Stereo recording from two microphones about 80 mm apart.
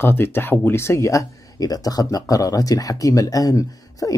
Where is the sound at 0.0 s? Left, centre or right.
Left.